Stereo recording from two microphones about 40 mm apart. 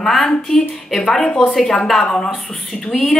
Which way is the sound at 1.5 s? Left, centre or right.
Centre.